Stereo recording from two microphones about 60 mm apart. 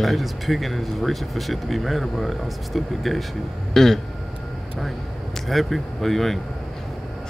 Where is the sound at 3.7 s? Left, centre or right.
Centre.